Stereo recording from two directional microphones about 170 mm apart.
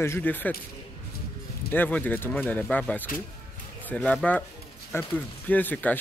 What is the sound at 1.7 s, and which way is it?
Speech, 10° left (ahead or behind).